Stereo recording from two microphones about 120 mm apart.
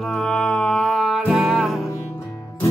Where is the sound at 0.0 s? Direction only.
5° left (ahead or behind).